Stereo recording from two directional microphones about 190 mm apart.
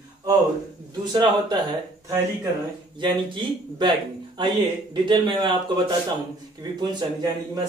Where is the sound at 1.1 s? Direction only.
20° right (ahead or behind).